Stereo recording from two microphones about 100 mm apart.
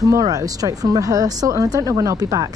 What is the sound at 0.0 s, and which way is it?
Speech, 35° right (ahead or behind).